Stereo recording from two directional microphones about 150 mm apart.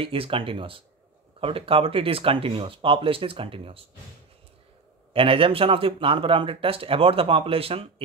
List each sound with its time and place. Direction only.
0.0 s speech: 35° right (ahead or behind)
5.1 s speech: 35° right (ahead or behind)